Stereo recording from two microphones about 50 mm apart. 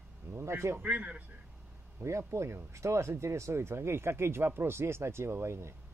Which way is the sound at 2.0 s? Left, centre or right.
Right.